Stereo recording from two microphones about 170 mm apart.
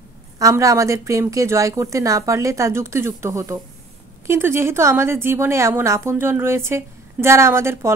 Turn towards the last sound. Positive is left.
turn(degrees=-15)  # may be behind; listen again after turning